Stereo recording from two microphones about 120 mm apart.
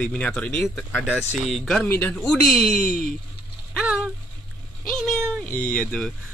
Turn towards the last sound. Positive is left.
turn(degrees=5)  # may be behind; listen again after turning